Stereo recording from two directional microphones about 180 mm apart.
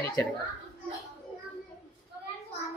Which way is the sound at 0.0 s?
15° left (ahead or behind).